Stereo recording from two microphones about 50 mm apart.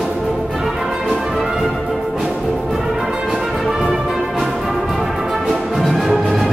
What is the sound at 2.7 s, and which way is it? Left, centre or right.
Music, centre.